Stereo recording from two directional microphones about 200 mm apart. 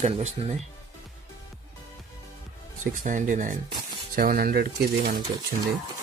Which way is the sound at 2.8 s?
40° right (ahead or behind).